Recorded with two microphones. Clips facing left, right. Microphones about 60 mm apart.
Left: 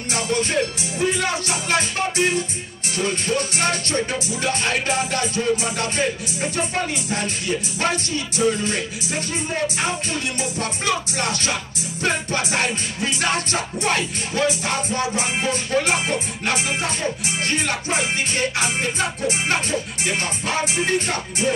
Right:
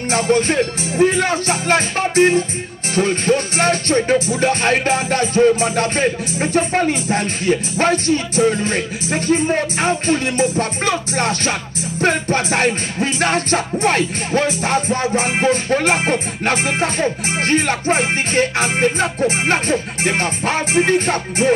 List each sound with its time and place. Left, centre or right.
0.1 s music: right